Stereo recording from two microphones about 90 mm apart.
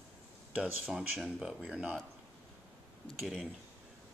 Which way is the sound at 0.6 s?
5° right (ahead or behind).